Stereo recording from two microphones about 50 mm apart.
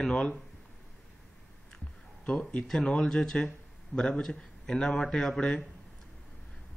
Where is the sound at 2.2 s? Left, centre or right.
Left.